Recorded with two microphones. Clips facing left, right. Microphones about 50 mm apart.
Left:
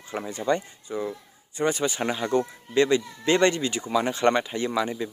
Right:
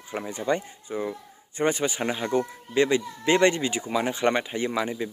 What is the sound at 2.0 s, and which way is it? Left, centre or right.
Speech, centre.